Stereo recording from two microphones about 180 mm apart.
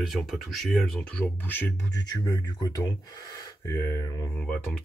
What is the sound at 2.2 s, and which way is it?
Speech, 20° left (ahead or behind).